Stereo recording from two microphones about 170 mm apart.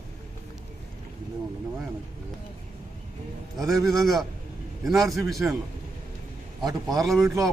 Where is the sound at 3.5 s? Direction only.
Centre (ahead or behind).